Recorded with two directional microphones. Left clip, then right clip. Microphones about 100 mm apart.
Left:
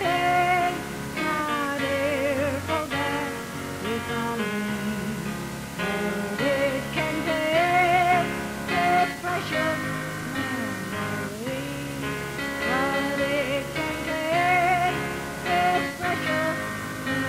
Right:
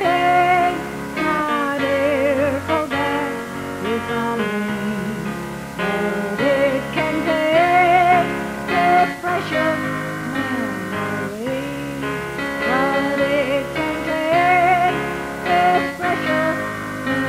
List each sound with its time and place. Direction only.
0.0 s music: 30° right (ahead or behind)
5.8 s music: 30° right (ahead or behind)
12.6 s music: 30° right (ahead or behind)